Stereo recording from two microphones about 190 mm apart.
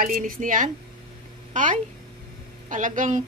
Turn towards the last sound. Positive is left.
turn(degrees=-40)  # may be behind; listen again after turning